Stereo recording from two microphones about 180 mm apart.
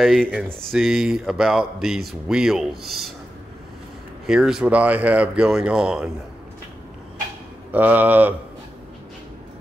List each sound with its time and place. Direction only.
0.0 s speech: centre (ahead or behind)
4.3 s speech: 5° right (ahead or behind)
7.7 s speech: 10° right (ahead or behind)